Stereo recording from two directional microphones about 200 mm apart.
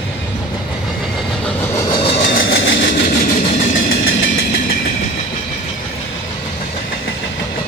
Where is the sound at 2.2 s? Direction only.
60° left (ahead or behind).